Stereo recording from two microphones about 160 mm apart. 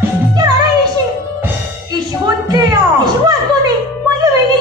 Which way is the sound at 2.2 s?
25° right (ahead or behind).